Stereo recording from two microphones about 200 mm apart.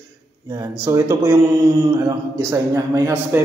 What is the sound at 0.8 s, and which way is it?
A man's voice, 15° right (ahead or behind).